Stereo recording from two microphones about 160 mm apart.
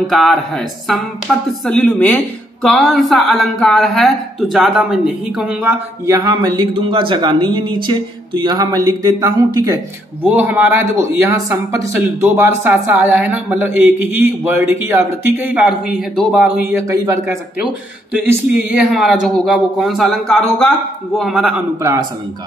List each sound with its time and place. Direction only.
0.1 s a woman's voice: centre (ahead or behind); by 9.8 s 20° right (ahead or behind)
10.2 s a woman's voice: 10° right (ahead or behind)
16.7 s a man's voice: 20° right (ahead or behind); by 21.6 s 5° right (ahead or behind)